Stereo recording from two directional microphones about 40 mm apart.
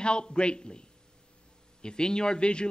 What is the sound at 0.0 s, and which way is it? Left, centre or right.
A man's voice, left.